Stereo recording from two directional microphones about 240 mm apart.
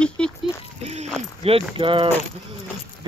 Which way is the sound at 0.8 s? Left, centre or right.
Right.